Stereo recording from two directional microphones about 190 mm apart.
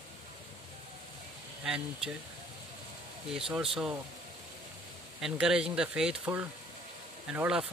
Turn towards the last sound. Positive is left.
turn(degrees=-5)  # may be behind; listen again after turning